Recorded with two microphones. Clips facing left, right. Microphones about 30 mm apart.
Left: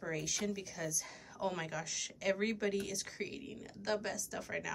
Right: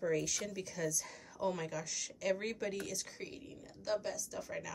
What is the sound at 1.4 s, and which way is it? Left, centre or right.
Speech, left.